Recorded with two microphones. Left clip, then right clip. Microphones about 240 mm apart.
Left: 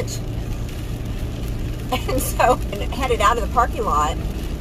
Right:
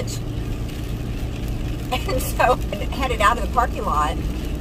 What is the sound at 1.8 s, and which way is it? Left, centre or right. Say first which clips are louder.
Speech: left 1 dB; centre.